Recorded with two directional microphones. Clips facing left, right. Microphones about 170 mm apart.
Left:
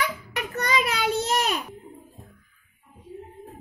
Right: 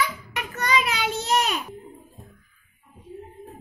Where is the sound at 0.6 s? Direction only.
50° left (ahead or behind).